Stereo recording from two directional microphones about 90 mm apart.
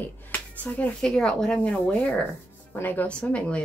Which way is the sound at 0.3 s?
15° left (ahead or behind).